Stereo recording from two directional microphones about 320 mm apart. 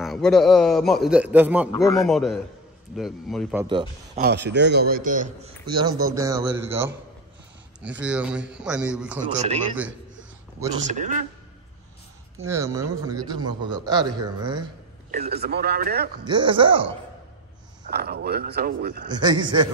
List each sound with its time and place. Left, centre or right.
0.0 s a man's voice: centre
4.1 s a man's voice: right; by 9.2 s centre
9.2 s a man's voice: right
10.9 s a man's voice: right
12.4 s a man's voice: centre; by 16.1 s right
16.3 s a man's voice: centre
17.8 s a man's voice: right
19.0 s a man's voice: centre